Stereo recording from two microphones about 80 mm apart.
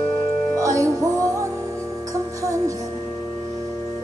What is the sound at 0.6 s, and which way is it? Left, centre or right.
Music, right.